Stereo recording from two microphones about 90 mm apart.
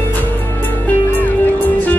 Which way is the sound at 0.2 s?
20° left (ahead or behind).